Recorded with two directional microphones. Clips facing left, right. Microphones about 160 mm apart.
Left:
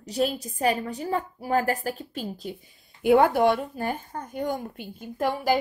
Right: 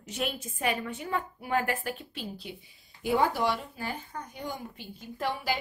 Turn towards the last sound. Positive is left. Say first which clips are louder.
# left 7 dB
turn(degrees=45)  # may be behind; listen again after turning